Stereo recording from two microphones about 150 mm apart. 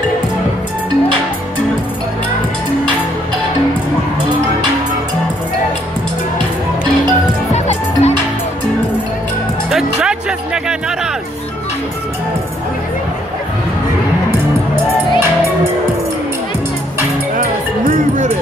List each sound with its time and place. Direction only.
7.5 s music: 45° left (ahead or behind)
9.7 s music: centre (ahead or behind)
17.8 s music: 55° right (ahead or behind)